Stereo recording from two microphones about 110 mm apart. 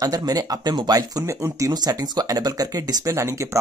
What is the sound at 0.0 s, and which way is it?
Speech, 35° right (ahead or behind).